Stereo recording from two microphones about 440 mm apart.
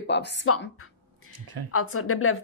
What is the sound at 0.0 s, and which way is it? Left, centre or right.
Speech, left.